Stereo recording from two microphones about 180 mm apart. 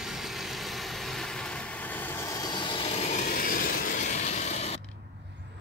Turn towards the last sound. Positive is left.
turn(degrees=40)  # may be behind; listen again after turning